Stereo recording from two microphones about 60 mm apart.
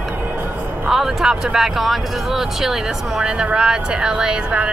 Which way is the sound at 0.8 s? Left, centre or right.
Centre.